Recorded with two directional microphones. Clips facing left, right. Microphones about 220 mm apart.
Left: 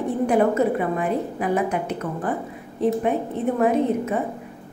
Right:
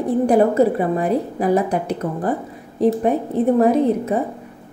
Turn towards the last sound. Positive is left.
turn(degrees=-35)  # may be behind; listen again after turning